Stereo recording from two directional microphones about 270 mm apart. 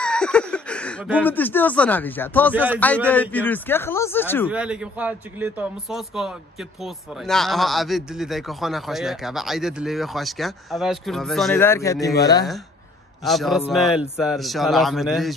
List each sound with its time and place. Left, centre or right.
0.0 s speech: centre
2.5 s speech: centre
2.8 s a man's voice: centre
4.5 s a man's voice: centre
13.2 s speech: centre